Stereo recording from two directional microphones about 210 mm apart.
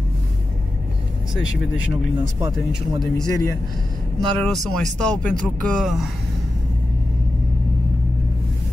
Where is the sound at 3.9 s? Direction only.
25° right (ahead or behind).